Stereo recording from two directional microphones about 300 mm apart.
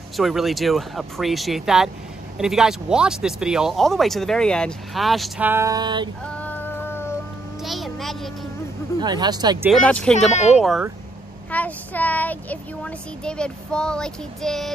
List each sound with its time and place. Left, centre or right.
0.2 s speech: centre
6.2 s music: centre
7.6 s a sound: centre
9.0 s speech: centre
9.7 s speech: centre
10.1 s speech: left
10.6 s speech: centre